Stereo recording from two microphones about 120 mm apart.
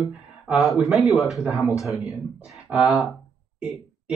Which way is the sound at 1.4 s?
10° right (ahead or behind).